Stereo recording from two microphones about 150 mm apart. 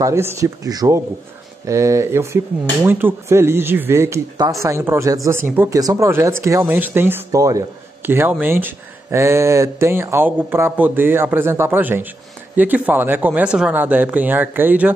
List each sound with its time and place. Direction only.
0.0 s speech: 20° right (ahead or behind)